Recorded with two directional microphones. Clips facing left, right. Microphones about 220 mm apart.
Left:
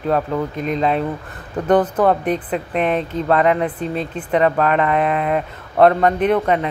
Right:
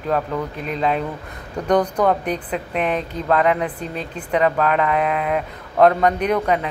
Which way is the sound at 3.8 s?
35° left (ahead or behind).